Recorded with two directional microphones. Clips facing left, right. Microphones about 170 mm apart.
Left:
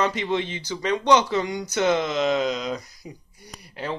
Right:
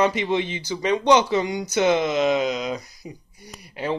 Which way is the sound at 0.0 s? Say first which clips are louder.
Right 3 dB; 15° right (ahead or behind).